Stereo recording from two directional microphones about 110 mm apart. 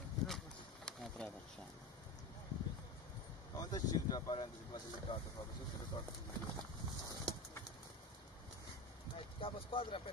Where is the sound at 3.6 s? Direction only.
35° left (ahead or behind).